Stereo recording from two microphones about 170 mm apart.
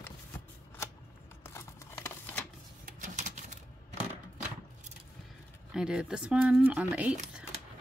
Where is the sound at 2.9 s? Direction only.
45° right (ahead or behind).